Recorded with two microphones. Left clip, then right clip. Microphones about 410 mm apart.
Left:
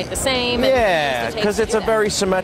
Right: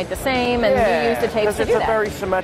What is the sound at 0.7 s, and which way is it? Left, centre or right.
Speech, left.